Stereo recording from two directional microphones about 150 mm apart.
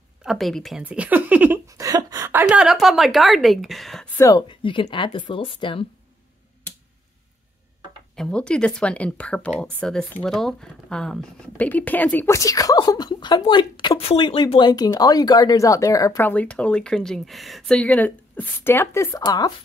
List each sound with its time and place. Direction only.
0.2 s a woman's voice: centre (ahead or behind)
0.8 s speech: 10° right (ahead or behind)
1.7 s a sound: 20° right (ahead or behind)
2.4 s a woman's voice: 5° right (ahead or behind)
4.2 s a woman's voice: 20° left (ahead or behind)
4.5 s a woman's voice: 35° left (ahead or behind)
8.2 s speech: 5° left (ahead or behind); by 19.5 s 25° left (ahead or behind)